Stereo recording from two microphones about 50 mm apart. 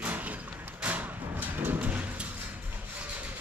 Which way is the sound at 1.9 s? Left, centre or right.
Right.